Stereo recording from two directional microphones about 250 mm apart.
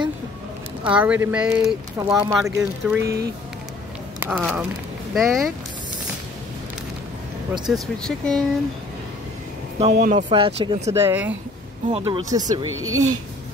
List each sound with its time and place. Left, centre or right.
0.8 s speech: centre
4.2 s speech: centre
7.5 s speech: centre
9.8 s speech: right
12.6 s speech: right